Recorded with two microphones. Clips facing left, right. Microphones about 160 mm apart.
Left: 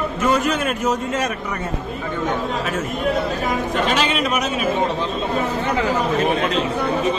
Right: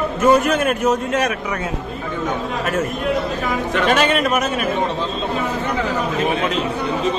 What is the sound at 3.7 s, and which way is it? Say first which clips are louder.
Speech: right 6 dB; 55° right (ahead or behind).